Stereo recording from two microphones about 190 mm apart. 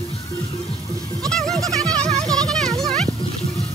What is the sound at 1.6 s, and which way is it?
Music, 15° right (ahead or behind).